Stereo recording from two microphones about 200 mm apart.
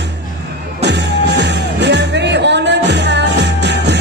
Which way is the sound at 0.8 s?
60° right (ahead or behind).